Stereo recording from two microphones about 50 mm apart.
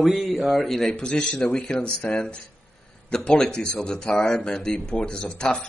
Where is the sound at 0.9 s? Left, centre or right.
Centre.